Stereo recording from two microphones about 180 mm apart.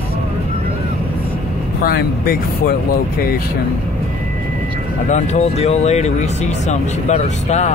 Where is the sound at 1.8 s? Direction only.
55° left (ahead or behind).